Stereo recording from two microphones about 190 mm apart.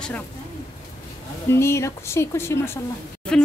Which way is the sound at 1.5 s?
15° left (ahead or behind).